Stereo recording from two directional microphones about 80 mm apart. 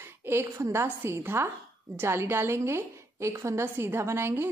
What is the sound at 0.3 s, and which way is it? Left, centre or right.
A man's voice, right.